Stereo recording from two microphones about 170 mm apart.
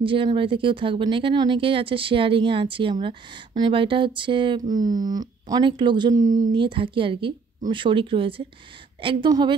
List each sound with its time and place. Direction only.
0.0 s speech: 30° right (ahead or behind)